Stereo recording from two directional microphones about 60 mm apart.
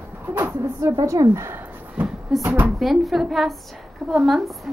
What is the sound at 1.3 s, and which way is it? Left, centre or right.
Speech, right.